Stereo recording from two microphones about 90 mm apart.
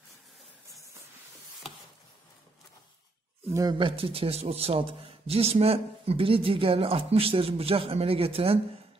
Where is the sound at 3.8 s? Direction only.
90° right.